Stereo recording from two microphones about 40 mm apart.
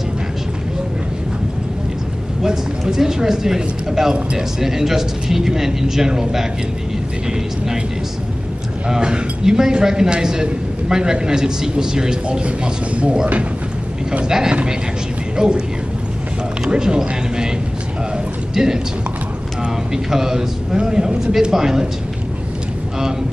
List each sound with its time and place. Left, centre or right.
2.4 s a man's voice: centre
8.8 s a man's voice: centre
12.4 s speech: right
14.2 s a man's voice: centre
14.5 s speech: right
16.7 s speech: right
18.1 s a sound: centre
19.6 s a man's voice: centre